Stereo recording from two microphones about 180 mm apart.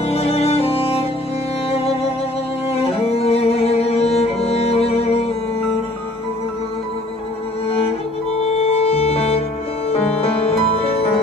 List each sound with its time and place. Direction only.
0.0 s music: 35° left (ahead or behind)
3.2 s music: 35° left (ahead or behind)
8.5 s music: 35° left (ahead or behind)